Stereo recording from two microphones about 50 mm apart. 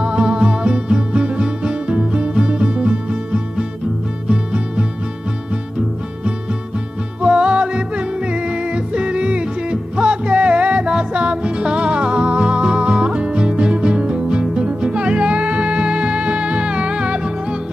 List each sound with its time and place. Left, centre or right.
0.0 s music: centre
7.2 s music: right